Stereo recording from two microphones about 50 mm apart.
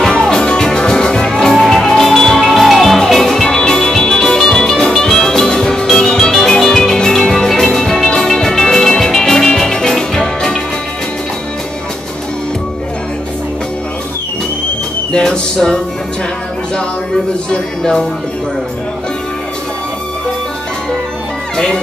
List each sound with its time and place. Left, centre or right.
0.0 s music: centre
15.1 s music: centre
17.5 s speech: centre